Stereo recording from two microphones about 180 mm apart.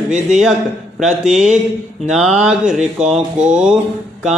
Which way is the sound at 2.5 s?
5° right (ahead or behind).